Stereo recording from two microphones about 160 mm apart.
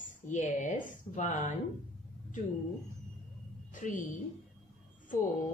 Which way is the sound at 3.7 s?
55° left (ahead or behind).